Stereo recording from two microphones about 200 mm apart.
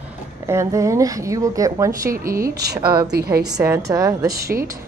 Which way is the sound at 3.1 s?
50° right (ahead or behind).